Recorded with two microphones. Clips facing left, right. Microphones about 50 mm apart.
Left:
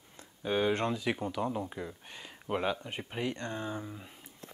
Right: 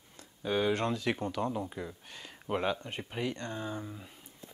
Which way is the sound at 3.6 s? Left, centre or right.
Centre.